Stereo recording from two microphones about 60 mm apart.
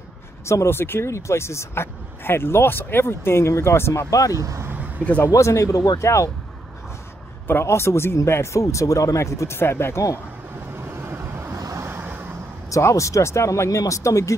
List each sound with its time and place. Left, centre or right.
0.5 s speech: left
4.1 s speech: left
4.4 s speech: right
5.3 s speech: left
7.6 s speech: left
9.6 s speech: left
11.0 s vehicle: right
11.5 s vehicle: right
12.6 s speech: left
13.7 s speech: left